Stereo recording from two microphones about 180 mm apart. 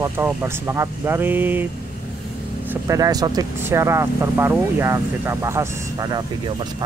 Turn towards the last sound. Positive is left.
turn(degrees=-25)  # may be behind; listen again after turning